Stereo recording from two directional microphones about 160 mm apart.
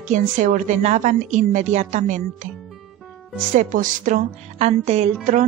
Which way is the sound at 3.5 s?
55° right (ahead or behind).